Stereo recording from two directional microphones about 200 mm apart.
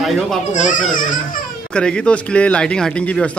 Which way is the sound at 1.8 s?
5° left (ahead or behind).